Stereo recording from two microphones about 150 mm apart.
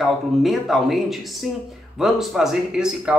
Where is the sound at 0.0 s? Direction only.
Centre (ahead or behind).